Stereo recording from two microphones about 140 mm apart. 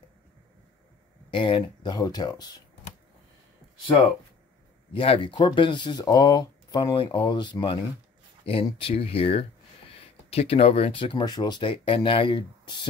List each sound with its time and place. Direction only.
1.3 s speech: 40° left (ahead or behind)
4.9 s speech: 40° left (ahead or behind)